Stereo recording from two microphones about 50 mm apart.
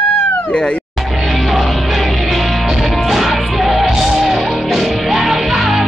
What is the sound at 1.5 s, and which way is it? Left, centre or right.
Music, centre.